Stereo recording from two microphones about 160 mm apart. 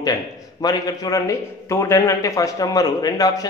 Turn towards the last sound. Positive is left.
turn(degrees=25)  # may be behind; listen again after turning